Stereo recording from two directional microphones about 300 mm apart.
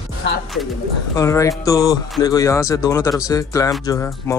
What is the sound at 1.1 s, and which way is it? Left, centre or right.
Speech, centre.